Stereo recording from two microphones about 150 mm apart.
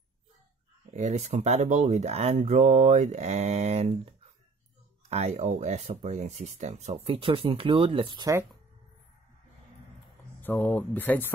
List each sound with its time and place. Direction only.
0.9 s speech: 50° right (ahead or behind)
5.1 s speech: 45° right (ahead or behind)
10.4 s speech: 15° left (ahead or behind)